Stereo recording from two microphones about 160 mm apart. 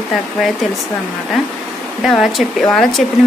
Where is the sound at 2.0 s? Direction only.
Centre (ahead or behind).